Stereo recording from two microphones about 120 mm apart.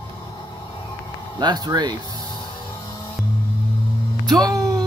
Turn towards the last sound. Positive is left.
turn(degrees=0)  # may be behind; listen again after turning